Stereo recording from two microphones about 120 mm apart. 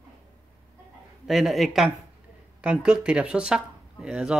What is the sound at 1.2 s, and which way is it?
A man's voice, centre (ahead or behind).